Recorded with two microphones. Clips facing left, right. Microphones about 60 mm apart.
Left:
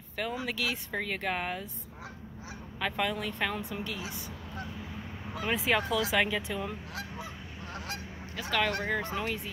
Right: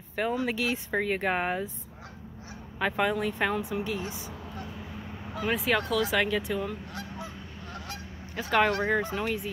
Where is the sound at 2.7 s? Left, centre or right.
Centre.